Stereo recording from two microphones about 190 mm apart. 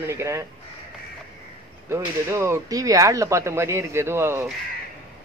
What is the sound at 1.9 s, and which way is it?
A man's voice, 15° right (ahead or behind).